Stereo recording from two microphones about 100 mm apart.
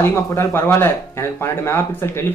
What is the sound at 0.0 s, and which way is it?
Speech, 25° left (ahead or behind).